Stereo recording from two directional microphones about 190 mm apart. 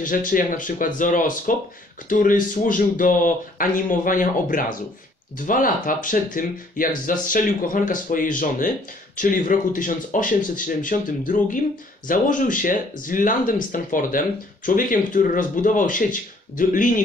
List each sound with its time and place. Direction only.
0.0 s speech: 45° left (ahead or behind)